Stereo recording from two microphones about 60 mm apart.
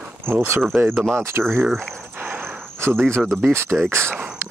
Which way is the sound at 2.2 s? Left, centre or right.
Right.